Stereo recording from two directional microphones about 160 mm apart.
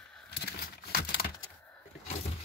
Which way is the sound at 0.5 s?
65° left (ahead or behind).